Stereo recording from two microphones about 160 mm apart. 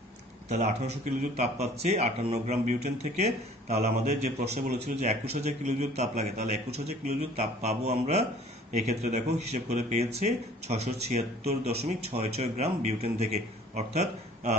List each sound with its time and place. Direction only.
0.5 s speech: 45° right (ahead or behind)